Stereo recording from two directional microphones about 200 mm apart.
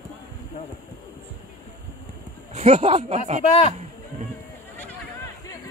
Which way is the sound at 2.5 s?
30° right (ahead or behind).